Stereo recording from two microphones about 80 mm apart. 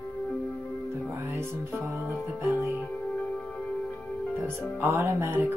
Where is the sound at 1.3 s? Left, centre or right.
Right.